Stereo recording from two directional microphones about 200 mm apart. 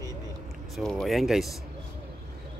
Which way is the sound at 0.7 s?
Centre (ahead or behind).